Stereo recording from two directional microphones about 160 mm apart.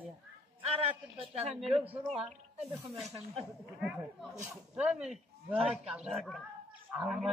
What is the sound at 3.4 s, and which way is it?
Speech, centre (ahead or behind).